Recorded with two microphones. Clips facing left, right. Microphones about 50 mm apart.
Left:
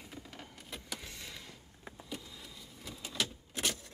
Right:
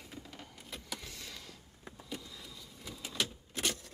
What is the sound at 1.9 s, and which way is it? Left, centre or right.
Power windows, centre.